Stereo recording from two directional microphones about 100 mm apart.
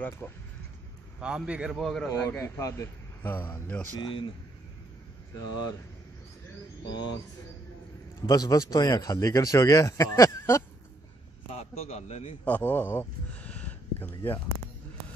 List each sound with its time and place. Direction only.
0.2 s speech: 20° left (ahead or behind)
1.2 s a man's voice: 10° right (ahead or behind)
1.7 s speech: centre (ahead or behind)
2.2 s speech: 30° left (ahead or behind)
4.0 s speech: 55° left (ahead or behind)
5.3 s speech: 40° left (ahead or behind)
6.9 s speech: 50° left (ahead or behind)
8.3 s speech: 35° left (ahead or behind)
11.5 s a man's voice: 90° left
12.4 s a sound: 15° left (ahead or behind)